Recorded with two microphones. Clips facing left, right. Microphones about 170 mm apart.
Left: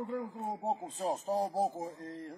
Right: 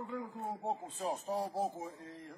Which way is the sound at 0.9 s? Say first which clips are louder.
Left 4 dB; 35° left (ahead or behind).